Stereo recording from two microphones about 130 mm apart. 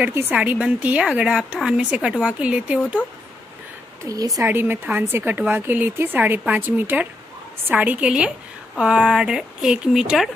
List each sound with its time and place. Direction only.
0.0 s a woman's voice: 15° right (ahead or behind)
4.0 s speech: 25° right (ahead or behind)
4.4 s a woman's voice: 15° right (ahead or behind)